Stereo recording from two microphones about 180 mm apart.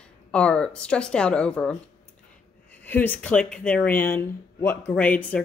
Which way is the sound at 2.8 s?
10° left (ahead or behind).